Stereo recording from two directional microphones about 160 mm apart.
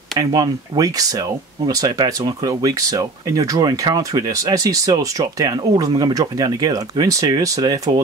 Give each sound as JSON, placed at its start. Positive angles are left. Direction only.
{"t": 0.2, "sound": "speech", "side_deg": -25}